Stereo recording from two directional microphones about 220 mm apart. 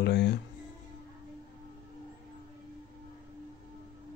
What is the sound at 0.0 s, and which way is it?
Speech, 50° left (ahead or behind).